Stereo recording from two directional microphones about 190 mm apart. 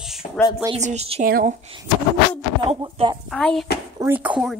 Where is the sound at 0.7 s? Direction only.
35° right (ahead or behind).